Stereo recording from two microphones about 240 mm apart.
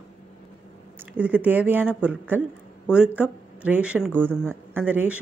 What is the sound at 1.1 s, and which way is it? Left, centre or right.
A woman's voice, centre.